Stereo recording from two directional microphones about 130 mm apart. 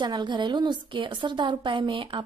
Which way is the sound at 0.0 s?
35° right (ahead or behind).